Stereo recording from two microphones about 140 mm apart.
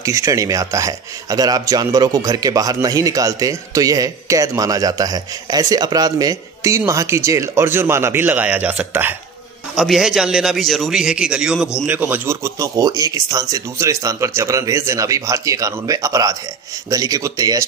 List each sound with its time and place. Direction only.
0.0 s speech: 25° right (ahead or behind)
9.8 s speech: centre (ahead or behind); by 17.6 s 25° right (ahead or behind)